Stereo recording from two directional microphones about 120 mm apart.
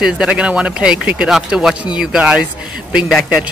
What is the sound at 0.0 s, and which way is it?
Speech, 5° right (ahead or behind).